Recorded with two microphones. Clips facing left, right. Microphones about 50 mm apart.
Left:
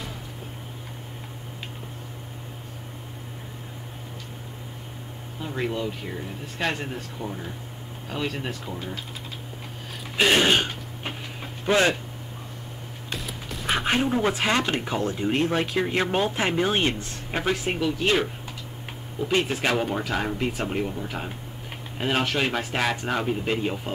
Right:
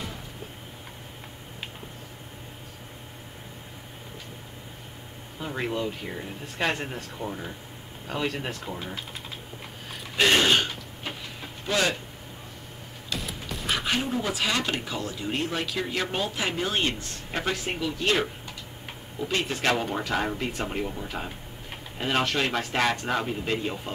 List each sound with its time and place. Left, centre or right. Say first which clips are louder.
5.4 s speech: left 1 dB; centre
10.1 s throat clearing: left 1 dB; centre
11.6 s speech: left 5 dB; left
13.2 s music: even; centre
13.7 s speech: left 4 dB; left
17.4 s speech: left 3 dB; centre
19.2 s speech: left 2 dB; centre